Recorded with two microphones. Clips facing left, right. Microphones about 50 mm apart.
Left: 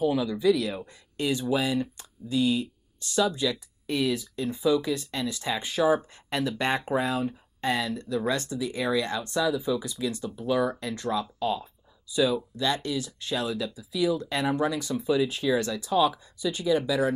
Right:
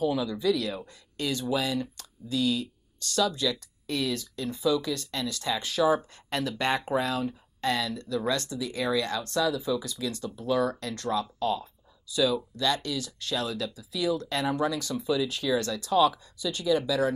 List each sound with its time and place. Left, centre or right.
0.0 s speech: centre